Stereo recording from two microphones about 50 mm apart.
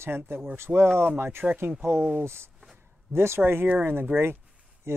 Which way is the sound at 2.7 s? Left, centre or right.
Right.